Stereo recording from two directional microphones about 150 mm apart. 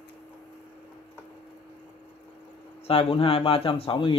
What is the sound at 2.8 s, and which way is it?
A man's voice, 40° left (ahead or behind).